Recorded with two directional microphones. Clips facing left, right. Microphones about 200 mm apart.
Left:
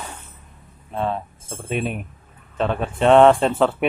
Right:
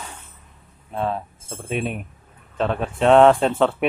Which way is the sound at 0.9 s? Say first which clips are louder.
Even; centre (ahead or behind).